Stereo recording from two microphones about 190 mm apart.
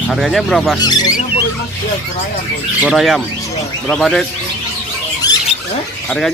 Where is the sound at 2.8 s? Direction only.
Centre (ahead or behind).